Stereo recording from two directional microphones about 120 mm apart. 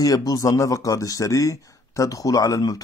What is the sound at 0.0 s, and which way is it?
Speech, 30° left (ahead or behind).